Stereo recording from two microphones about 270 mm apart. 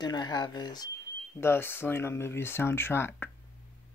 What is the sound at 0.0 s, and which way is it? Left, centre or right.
Speech, centre.